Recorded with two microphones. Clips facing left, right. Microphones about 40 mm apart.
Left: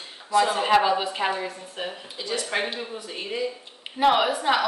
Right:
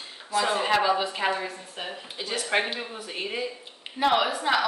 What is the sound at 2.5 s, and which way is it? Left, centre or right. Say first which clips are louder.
Speech: right 3 dB; right.